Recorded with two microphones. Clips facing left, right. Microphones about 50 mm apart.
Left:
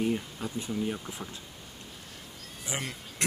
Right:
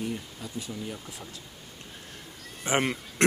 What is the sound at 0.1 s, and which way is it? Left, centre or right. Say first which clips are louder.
Speech: left 4 dB; left.